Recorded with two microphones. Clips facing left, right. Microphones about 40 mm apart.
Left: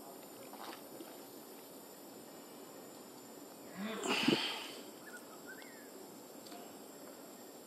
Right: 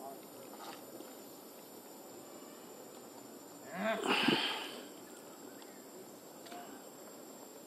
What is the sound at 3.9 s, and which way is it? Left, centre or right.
Sniff, centre.